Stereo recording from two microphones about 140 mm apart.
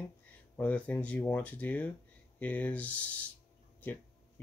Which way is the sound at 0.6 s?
10° left (ahead or behind).